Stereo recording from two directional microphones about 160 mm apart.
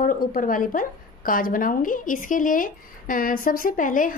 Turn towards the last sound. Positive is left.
turn(degrees=55)  # may be behind; listen again after turning